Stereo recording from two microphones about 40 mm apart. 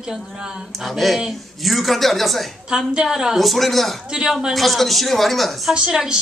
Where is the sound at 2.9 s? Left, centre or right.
Centre.